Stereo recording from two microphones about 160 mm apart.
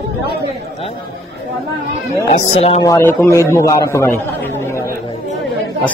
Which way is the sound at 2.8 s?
15° left (ahead or behind).